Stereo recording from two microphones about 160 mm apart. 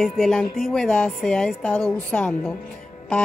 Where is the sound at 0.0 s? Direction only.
Centre (ahead or behind).